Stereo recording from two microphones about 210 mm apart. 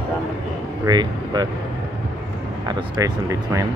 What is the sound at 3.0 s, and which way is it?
Speech, 15° right (ahead or behind).